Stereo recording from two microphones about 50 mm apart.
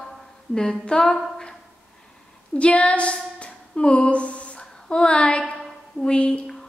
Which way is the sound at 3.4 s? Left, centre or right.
Centre.